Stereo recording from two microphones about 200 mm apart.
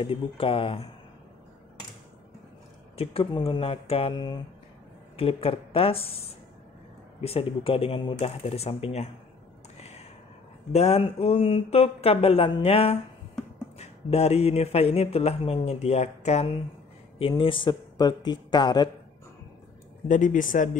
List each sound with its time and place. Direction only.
0.0 s speech: 25° left (ahead or behind)
3.0 s speech: 30° left (ahead or behind)
9.8 s a sound: 30° left (ahead or behind)
10.7 s speech: 30° left (ahead or behind)
20.1 s speech: 40° left (ahead or behind)